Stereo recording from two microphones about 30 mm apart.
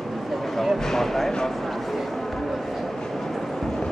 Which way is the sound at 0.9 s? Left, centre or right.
Centre.